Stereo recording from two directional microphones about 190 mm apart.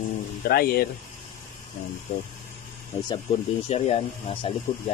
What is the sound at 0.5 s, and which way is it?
Speech, 55° left (ahead or behind).